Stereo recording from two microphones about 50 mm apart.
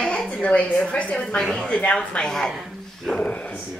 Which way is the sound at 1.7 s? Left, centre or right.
Left.